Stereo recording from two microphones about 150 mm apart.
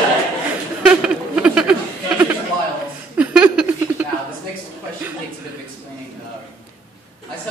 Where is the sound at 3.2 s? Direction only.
10° right (ahead or behind).